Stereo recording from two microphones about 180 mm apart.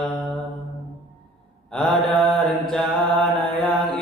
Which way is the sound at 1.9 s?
Centre (ahead or behind).